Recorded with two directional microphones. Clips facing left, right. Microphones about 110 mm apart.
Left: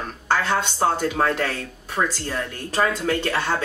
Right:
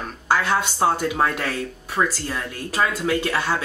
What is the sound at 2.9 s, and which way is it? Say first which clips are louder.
Speech: right 1 dB; 10° right (ahead or behind).